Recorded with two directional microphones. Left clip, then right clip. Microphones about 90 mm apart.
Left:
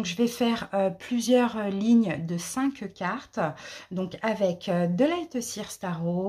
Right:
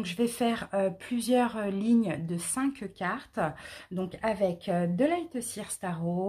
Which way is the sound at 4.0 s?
20° left (ahead or behind).